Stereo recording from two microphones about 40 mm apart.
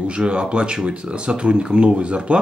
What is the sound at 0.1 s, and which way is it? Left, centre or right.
Speech, right.